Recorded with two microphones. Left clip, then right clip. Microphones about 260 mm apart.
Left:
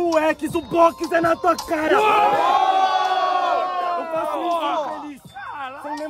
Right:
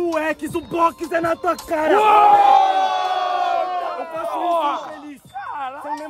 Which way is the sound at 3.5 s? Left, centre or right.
Right.